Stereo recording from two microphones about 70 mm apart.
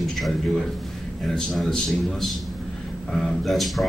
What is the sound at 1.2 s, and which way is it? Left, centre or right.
Speech, centre.